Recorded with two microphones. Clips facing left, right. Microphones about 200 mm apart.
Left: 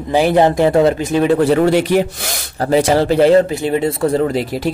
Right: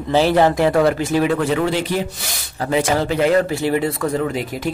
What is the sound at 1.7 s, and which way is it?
Speech, 60° left (ahead or behind).